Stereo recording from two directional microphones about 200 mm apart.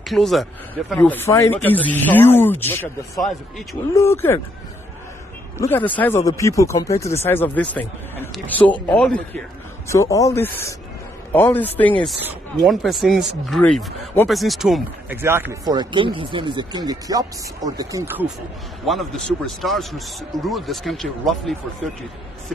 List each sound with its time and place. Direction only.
0.0 s speech: centre (ahead or behind)
5.6 s speech: 10° left (ahead or behind)
12.2 s speech: 5° right (ahead or behind)
18.9 s speech: centre (ahead or behind)